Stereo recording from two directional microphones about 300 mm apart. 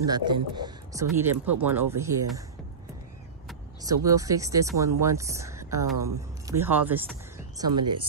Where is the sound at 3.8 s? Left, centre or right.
Centre.